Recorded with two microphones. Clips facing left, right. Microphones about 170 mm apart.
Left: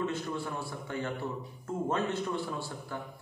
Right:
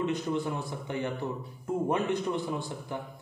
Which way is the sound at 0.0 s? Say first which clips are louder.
Right 4 dB; 20° right (ahead or behind).